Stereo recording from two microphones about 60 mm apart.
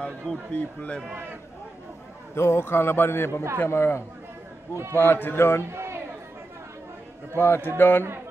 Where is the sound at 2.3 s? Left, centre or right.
Left.